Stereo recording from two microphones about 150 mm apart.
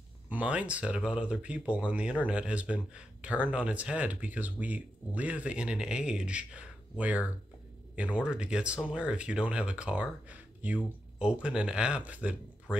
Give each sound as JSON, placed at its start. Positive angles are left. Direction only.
{"t": 0.3, "sound": "speech", "side_deg": -10}